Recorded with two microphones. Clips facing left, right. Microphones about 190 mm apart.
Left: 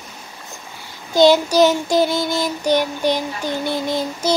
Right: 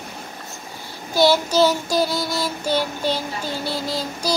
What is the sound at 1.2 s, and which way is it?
Child singing, 15° left (ahead or behind).